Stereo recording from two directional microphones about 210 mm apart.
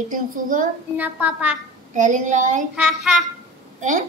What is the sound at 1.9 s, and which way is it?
Speech, 35° right (ahead or behind).